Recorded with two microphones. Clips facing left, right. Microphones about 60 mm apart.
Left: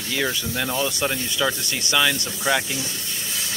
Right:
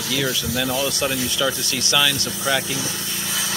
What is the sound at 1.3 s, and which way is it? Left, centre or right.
Speech, centre.